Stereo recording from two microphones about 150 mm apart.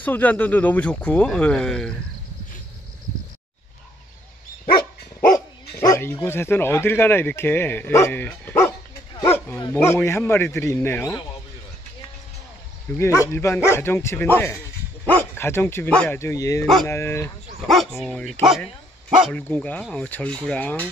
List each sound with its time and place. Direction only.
0.0 s speech: 10° left (ahead or behind)
5.8 s speech: 20° left (ahead or behind)
9.2 s bow-wow: 15° left (ahead or behind)
9.6 s speech: 20° left (ahead or behind)
13.0 s speech: 20° left (ahead or behind)
17.6 s speech: centre (ahead or behind)
19.5 s speech: 10° left (ahead or behind)